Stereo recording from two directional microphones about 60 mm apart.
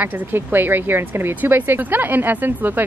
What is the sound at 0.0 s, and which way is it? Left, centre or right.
Speech, right.